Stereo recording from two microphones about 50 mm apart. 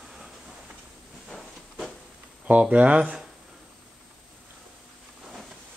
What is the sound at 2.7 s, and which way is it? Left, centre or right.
Speech, right.